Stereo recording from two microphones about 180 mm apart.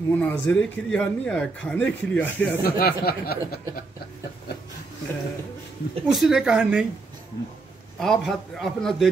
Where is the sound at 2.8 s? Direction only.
60° left (ahead or behind).